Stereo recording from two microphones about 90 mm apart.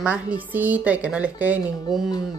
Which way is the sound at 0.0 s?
15° right (ahead or behind).